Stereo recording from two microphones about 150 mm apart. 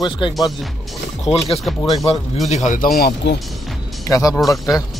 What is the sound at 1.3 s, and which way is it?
Speech, 40° left (ahead or behind).